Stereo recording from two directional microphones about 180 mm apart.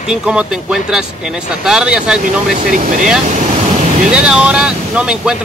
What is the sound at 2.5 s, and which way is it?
Speech, 45° right (ahead or behind).